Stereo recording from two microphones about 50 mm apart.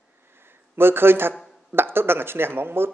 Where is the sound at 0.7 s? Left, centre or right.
Right.